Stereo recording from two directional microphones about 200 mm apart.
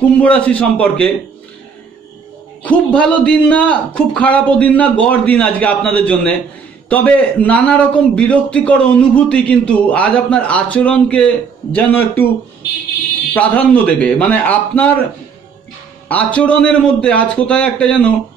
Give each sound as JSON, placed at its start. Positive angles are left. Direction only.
{"t": 0.2, "sound": "a man's voice", "side_deg": 5}
{"t": 2.6, "sound": "a man's voice", "side_deg": 5}
{"t": 13.3, "sound": "a man's voice", "side_deg": 5}
{"t": 16.1, "sound": "a man's voice", "side_deg": 5}